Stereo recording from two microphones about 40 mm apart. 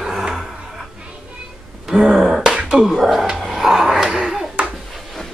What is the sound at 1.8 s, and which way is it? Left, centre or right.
Wail, centre.